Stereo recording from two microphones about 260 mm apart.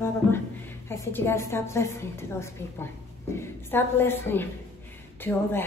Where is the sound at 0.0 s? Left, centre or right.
Centre.